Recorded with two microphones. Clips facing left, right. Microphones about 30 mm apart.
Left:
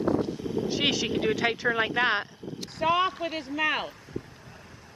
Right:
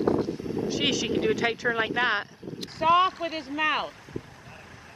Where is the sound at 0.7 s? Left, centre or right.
Centre.